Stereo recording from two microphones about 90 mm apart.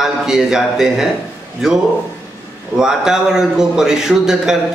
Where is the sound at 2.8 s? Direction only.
5° right (ahead or behind).